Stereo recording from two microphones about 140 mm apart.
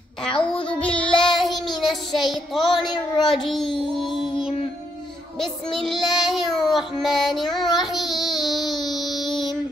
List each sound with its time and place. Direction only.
0.4 s child singing: 10° left (ahead or behind)
2.8 s a woman's voice: 30° left (ahead or behind)
3.4 s child singing: centre (ahead or behind)
3.9 s music: centre (ahead or behind)
5.4 s child singing: centre (ahead or behind)